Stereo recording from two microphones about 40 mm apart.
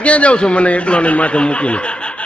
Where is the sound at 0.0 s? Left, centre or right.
Left.